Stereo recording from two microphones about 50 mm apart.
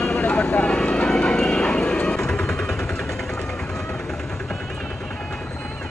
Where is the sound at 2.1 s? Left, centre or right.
Centre.